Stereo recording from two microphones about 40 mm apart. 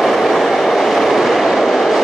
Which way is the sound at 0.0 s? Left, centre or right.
Centre.